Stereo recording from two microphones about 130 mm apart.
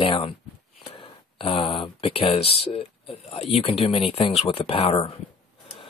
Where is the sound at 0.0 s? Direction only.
40° left (ahead or behind).